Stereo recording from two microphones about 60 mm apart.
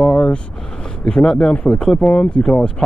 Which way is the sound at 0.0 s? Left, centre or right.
Centre.